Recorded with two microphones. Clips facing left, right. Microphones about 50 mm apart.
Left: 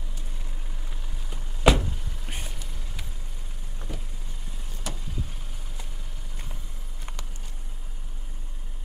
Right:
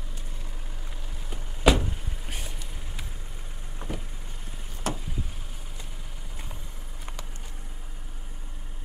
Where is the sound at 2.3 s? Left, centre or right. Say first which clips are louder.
Left 1 dB; centre.